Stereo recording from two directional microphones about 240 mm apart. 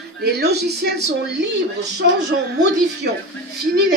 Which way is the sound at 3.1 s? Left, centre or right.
Right.